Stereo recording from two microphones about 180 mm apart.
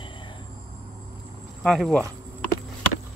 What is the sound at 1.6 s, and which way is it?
Speech, 5° left (ahead or behind).